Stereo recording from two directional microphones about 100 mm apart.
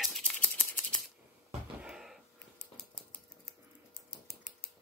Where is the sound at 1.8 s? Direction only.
5° right (ahead or behind).